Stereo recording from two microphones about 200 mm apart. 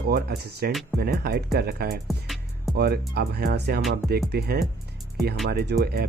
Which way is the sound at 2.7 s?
50° right (ahead or behind).